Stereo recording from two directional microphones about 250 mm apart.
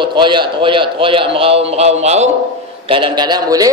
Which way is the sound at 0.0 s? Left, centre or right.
Centre.